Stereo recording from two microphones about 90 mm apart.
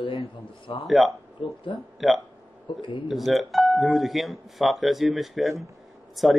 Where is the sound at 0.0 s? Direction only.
70° left (ahead or behind).